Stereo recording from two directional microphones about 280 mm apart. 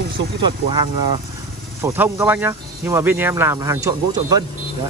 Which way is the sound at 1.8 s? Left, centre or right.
Centre.